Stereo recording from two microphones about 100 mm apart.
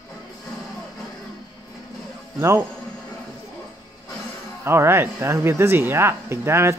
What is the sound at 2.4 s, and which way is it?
Speech, 30° right (ahead or behind).